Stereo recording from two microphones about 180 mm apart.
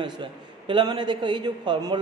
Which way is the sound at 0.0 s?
25° right (ahead or behind).